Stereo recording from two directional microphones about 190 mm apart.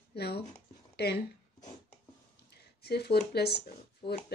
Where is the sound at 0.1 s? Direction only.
60° left (ahead or behind).